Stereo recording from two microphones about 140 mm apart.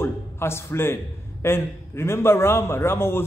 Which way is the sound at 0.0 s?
15° left (ahead or behind).